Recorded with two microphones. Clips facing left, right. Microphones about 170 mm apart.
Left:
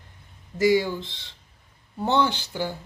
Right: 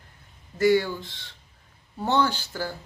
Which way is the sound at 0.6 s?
15° left (ahead or behind).